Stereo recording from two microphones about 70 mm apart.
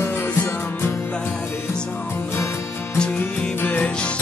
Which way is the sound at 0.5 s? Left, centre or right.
Left.